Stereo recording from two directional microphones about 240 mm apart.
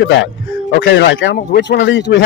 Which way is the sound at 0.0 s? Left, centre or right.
Left.